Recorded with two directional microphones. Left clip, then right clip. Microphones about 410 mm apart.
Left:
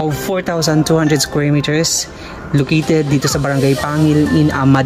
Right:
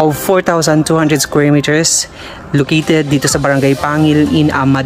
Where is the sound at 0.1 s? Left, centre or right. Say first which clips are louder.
Right 6 dB; centre.